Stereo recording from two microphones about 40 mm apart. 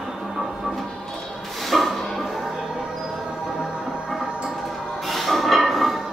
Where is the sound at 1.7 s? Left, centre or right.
Centre.